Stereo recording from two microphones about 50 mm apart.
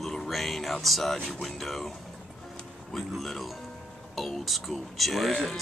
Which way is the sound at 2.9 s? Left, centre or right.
Centre.